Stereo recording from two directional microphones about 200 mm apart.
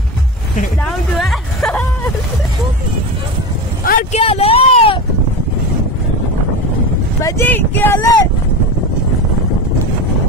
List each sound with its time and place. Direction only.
0.8 s music: centre (ahead or behind)
3.8 s vehicle: 45° left (ahead or behind)
4.2 s a sound: 30° left (ahead or behind)
7.2 s speech: 15° left (ahead or behind)